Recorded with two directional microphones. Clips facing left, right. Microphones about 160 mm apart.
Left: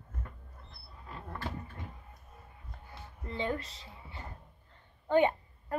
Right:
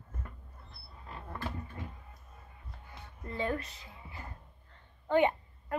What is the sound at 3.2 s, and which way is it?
Speech, 25° left (ahead or behind).